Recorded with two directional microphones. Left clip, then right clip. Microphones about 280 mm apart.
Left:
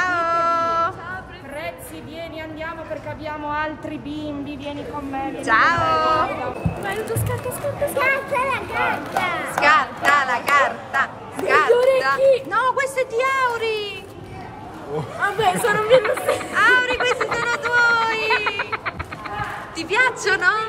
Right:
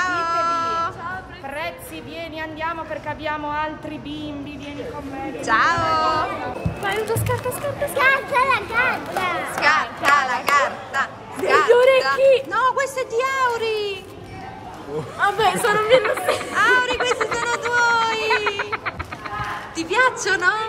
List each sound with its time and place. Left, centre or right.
0.0 s a sound: centre
3.4 s speech: centre
5.4 s speech: centre
6.8 s speech: right
8.0 s speech: centre
9.7 s a sound: centre
11.9 s speech: centre
15.1 s speech: centre
17.7 s a sound: centre
18.3 s music: centre
19.8 s speech: centre